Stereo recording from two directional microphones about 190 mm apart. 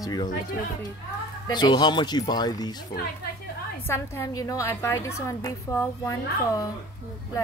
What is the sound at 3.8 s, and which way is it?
A woman's voice, 15° left (ahead or behind).